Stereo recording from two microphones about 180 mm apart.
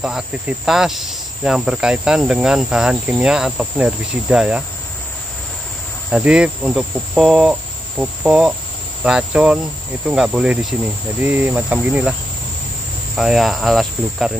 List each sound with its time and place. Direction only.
0.0 s cricket: 5° right (ahead or behind)
6.0 s cricket: 5° right (ahead or behind)
11.1 s speech: 10° right (ahead or behind)
13.2 s cricket: centre (ahead or behind)